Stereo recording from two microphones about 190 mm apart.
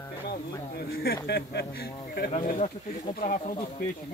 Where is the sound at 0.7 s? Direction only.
55° left (ahead or behind).